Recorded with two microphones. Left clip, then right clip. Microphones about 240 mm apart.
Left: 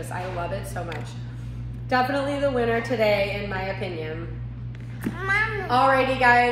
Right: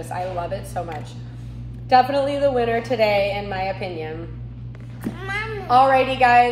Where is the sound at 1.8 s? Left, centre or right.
Centre.